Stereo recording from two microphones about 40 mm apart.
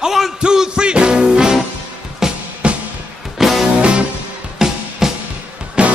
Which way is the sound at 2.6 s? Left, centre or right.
Right.